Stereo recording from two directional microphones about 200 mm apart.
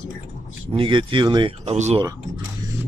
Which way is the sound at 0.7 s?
25° right (ahead or behind).